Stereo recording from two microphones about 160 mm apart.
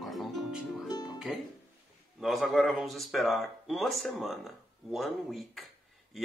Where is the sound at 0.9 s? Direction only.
25° left (ahead or behind).